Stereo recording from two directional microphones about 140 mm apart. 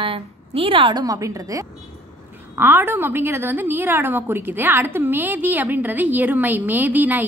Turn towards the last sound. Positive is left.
turn(degrees=-10)  # may be behind; listen again after turning